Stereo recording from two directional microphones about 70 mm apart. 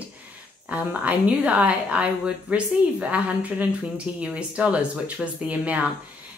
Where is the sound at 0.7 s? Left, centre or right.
Right.